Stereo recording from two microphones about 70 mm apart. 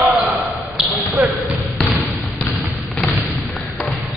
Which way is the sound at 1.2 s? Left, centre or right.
Right.